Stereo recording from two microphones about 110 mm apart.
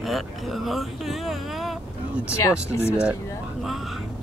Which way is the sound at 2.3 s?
25° left (ahead or behind).